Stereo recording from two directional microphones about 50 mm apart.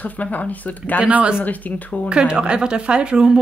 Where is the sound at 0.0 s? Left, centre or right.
Left.